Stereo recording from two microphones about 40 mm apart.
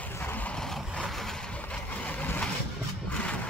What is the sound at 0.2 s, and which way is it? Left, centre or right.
Vehicle, left.